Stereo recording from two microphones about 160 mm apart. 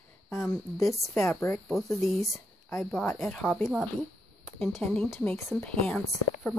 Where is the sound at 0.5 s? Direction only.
20° left (ahead or behind).